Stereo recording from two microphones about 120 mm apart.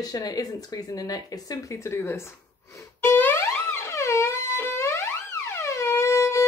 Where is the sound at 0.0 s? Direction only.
30° left (ahead or behind).